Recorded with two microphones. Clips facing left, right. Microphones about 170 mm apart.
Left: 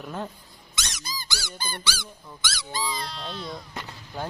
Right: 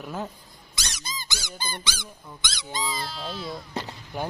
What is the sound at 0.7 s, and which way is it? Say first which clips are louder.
Squeak: left 1 dB; 30° right (ahead or behind).